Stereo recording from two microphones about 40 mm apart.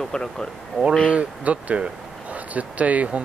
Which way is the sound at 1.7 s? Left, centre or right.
Right.